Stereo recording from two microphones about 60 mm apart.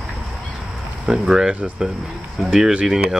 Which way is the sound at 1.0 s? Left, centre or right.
Centre.